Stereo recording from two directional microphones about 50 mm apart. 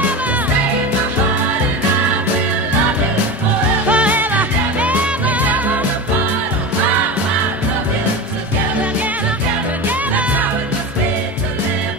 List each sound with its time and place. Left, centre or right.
3.9 s music: right
9.8 s music: right